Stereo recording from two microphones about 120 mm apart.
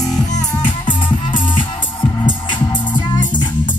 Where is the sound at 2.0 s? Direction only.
40° left (ahead or behind).